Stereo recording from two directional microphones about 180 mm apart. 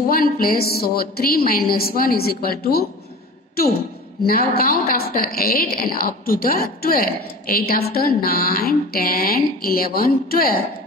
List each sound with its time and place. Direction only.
0.1 s a woman's voice: 55° left (ahead or behind)
4.2 s a woman's voice: 60° left (ahead or behind)